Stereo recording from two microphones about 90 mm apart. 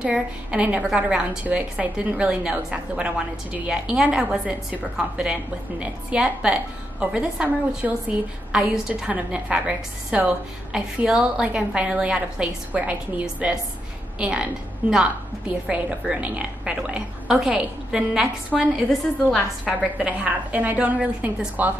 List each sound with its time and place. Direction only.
0.0 s a woman's voice: 10° right (ahead or behind)
19.3 s a woman's voice: centre (ahead or behind)
20.0 s a woman's voice: 15° right (ahead or behind)